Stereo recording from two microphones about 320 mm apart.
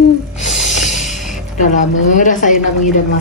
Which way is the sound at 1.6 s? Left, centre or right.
Left.